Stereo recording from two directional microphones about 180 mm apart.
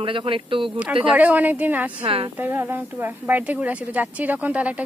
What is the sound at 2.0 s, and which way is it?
Speech, 30° right (ahead or behind).